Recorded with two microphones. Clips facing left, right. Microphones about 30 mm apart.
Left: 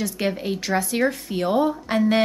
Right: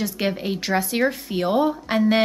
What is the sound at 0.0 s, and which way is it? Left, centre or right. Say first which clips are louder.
Speech: even; centre.